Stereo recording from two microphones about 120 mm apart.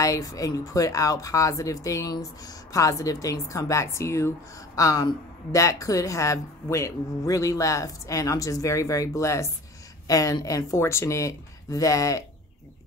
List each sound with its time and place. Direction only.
0.0 s speech: 30° left (ahead or behind)